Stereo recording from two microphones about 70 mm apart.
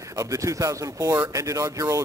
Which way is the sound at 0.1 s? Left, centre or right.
Right.